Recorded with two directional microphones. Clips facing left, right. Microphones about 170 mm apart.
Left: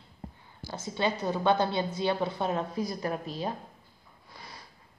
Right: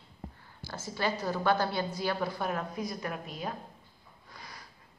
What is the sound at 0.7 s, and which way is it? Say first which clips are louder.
A woman's voice: left 3 dB; 20° left (ahead or behind).